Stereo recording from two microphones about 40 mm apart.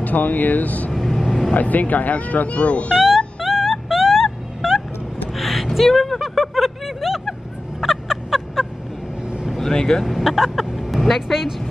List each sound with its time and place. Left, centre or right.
0.0 s speech: left
0.9 s vehicle: centre
1.5 s speech: left
3.3 s cat: centre
5.3 s a sound: centre
9.6 s speech: centre
10.0 s speech: centre